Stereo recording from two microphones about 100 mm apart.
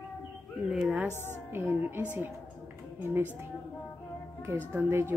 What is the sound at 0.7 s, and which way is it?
Speech, 5° right (ahead or behind).